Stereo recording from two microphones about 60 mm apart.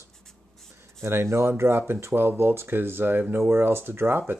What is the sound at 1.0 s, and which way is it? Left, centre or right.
Speech, right.